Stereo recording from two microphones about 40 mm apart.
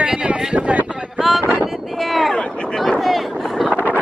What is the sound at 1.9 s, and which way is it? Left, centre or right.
Speech, centre.